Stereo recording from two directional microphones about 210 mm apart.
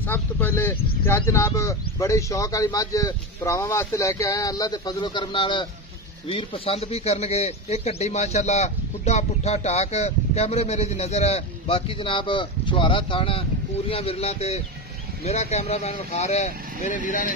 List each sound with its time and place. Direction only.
0.1 s a man's voice: 10° left (ahead or behind); by 17.3 s 40° left (ahead or behind)